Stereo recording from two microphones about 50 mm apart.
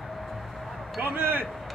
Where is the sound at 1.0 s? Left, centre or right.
Right.